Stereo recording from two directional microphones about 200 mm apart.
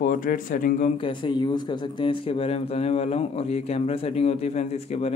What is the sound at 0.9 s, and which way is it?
A man's voice, 25° left (ahead or behind).